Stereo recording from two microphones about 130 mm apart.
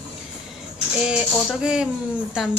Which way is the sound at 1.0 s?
5° right (ahead or behind).